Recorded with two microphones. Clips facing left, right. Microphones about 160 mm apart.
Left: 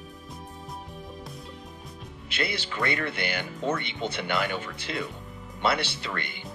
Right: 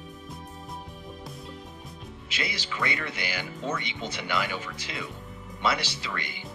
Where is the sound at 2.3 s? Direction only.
60° left (ahead or behind).